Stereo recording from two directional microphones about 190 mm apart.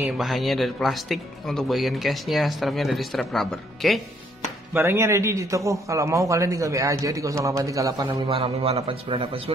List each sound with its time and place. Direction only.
0.0 s speech: centre (ahead or behind)
4.7 s a man's voice: 15° right (ahead or behind)
8.3 s a man's voice: 30° right (ahead or behind)